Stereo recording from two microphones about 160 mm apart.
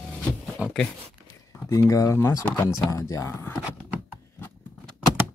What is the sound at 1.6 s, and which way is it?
Speech, 20° left (ahead or behind).